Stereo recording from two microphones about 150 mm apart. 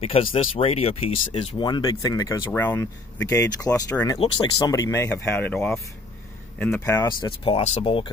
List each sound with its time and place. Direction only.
0.0 s speech: 40° left (ahead or behind); by 5.8 s 5° left (ahead or behind)
6.8 s speech: 25° left (ahead or behind)